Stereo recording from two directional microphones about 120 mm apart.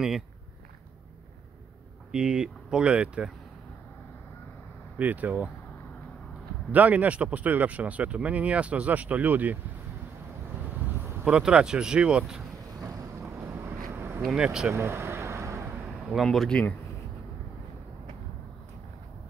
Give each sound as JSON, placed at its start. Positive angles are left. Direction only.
{"t": 2.1, "sound": "speech", "side_deg": -10}
{"t": 4.9, "sound": "speech", "side_deg": -15}
{"t": 6.7, "sound": "speech", "side_deg": -15}
{"t": 10.7, "sound": "speech", "side_deg": -15}
{"t": 13.3, "sound": "vehicle", "side_deg": -20}
{"t": 13.7, "sound": "a sound", "side_deg": -25}
{"t": 14.2, "sound": "speech", "side_deg": -5}
{"t": 14.7, "sound": "vehicle", "side_deg": -20}
{"t": 16.1, "sound": "speech", "side_deg": 0}